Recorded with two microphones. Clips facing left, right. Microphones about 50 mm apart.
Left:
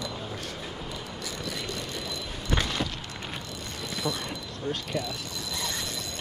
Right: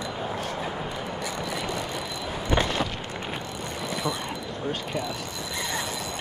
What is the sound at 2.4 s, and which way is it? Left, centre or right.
Vehicle, centre.